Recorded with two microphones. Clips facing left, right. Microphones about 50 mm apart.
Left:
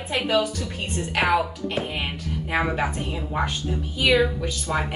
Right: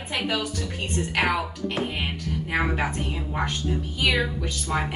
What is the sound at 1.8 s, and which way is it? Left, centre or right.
Speech, centre.